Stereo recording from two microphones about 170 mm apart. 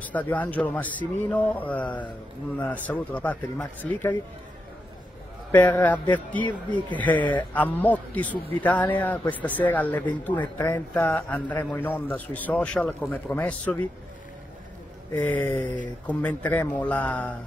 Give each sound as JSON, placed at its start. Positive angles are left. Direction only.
{"t": 0.0, "sound": "a man's voice", "side_deg": 10}
{"t": 5.5, "sound": "a man's voice", "side_deg": 10}
{"t": 15.2, "sound": "a man's voice", "side_deg": 10}